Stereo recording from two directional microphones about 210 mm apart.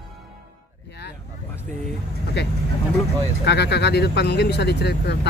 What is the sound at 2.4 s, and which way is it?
Speech, 55° left (ahead or behind).